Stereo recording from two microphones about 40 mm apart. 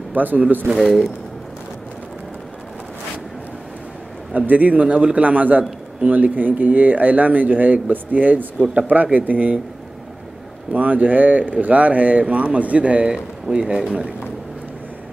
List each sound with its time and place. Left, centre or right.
0.1 s speech: right
0.7 s speech: centre
4.3 s speech: right
10.7 s speech: right
13.1 s speech: right